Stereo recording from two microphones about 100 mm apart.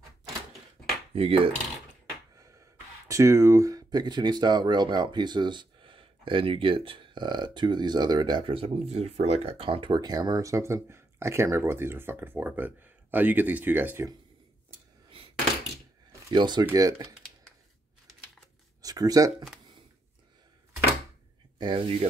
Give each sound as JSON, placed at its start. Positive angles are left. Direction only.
{"t": 1.1, "sound": "cutlery", "side_deg": -75}
{"t": 3.1, "sound": "speech", "side_deg": -30}
{"t": 15.0, "sound": "a sound", "side_deg": -65}
{"t": 16.3, "sound": "speech", "side_deg": -50}
{"t": 18.8, "sound": "speech", "side_deg": -40}
{"t": 21.5, "sound": "speech", "side_deg": -55}